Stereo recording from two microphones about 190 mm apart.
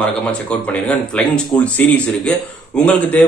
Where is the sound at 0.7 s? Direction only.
5° left (ahead or behind).